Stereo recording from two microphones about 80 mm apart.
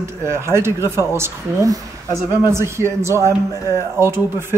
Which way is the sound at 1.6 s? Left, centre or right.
Right.